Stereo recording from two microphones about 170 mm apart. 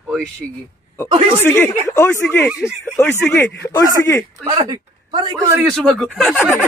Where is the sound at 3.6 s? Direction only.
20° left (ahead or behind).